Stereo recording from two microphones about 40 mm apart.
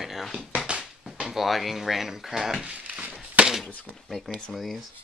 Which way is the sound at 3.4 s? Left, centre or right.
Right.